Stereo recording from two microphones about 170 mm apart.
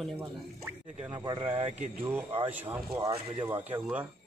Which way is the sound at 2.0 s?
10° right (ahead or behind).